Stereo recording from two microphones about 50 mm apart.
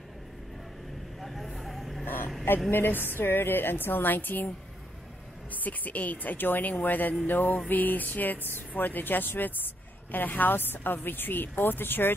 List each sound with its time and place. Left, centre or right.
1.2 s vehicle: centre
2.7 s speech: left
5.5 s speech: left